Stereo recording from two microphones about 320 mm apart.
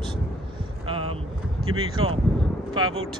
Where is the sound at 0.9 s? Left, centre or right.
Centre.